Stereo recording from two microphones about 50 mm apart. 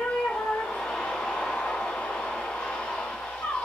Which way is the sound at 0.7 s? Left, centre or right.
Centre.